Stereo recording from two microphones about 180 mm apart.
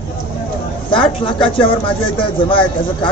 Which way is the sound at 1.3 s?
30° left (ahead or behind).